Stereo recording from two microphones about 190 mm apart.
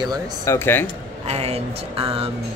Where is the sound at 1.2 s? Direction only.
35° right (ahead or behind).